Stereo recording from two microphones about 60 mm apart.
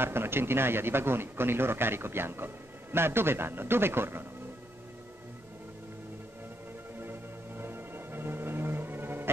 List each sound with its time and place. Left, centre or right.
0.0 s speech: right
7.0 s music: right